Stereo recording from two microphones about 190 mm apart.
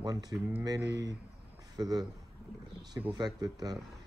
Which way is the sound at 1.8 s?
20° right (ahead or behind).